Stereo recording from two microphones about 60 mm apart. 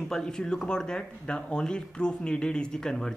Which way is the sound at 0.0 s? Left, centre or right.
Centre.